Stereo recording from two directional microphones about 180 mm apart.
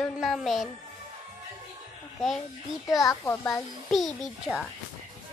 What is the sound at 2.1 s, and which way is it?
Speech, centre (ahead or behind).